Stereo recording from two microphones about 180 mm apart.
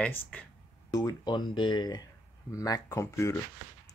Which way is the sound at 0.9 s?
20° left (ahead or behind).